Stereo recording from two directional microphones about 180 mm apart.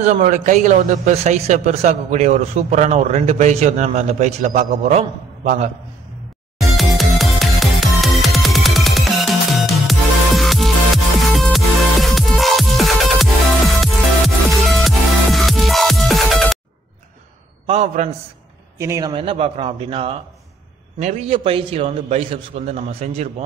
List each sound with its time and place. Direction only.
0.0 s a man's voice: 40° right (ahead or behind)
6.6 s music: centre (ahead or behind)
17.6 s a man's voice: 40° right (ahead or behind)
18.8 s a man's voice: 20° right (ahead or behind); by 23.3 s 35° right (ahead or behind)